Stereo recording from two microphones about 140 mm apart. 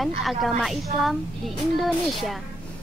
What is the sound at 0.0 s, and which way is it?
A woman's voice, centre (ahead or behind).